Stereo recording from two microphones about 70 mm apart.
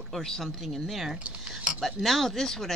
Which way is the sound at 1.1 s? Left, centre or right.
Right.